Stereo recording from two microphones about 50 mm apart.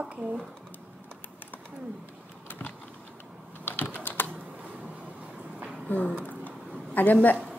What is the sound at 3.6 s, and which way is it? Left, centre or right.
Typing, left.